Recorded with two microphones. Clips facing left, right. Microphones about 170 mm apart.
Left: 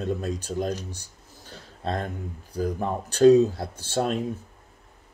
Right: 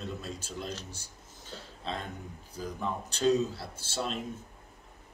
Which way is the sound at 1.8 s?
50° left (ahead or behind).